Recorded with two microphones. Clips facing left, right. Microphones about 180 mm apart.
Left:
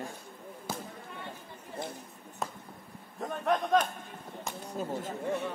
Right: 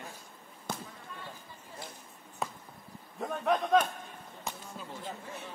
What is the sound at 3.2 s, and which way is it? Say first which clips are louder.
Speech: even; 5° right (ahead or behind).